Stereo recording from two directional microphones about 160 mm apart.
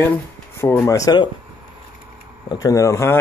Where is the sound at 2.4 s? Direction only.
20° left (ahead or behind).